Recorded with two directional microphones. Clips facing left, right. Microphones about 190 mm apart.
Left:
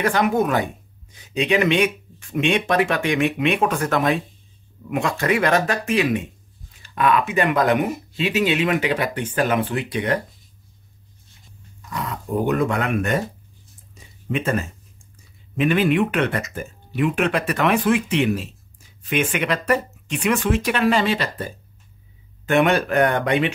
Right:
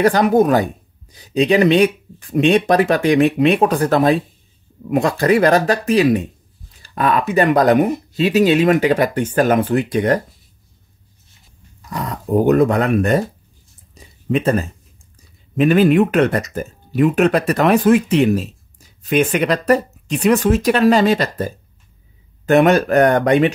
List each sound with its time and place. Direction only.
0.0 s speech: 35° right (ahead or behind)
11.9 s speech: 40° right (ahead or behind)
13.9 s a sound: 35° right (ahead or behind)
15.5 s speech: 40° right (ahead or behind)